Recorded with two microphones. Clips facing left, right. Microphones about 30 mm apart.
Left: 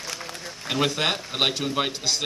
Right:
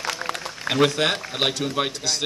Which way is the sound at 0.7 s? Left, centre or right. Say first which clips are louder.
Right 4 dB; centre.